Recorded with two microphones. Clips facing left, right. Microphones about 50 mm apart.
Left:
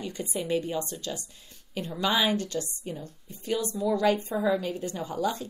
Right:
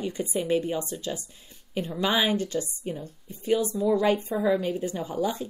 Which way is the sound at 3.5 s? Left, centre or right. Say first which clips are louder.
Right 4 dB; right.